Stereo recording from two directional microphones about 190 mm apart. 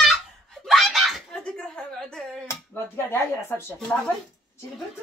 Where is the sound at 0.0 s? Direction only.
Centre (ahead or behind).